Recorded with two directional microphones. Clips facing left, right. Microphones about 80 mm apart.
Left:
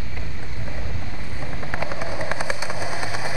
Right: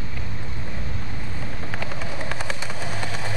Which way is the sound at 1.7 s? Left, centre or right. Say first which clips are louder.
Left 5 dB; centre.